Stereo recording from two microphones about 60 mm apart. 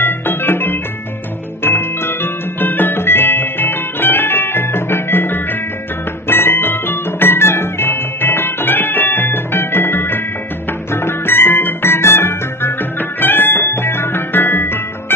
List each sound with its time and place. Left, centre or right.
0.0 s music: left
1.6 s organ: left
2.6 s music: left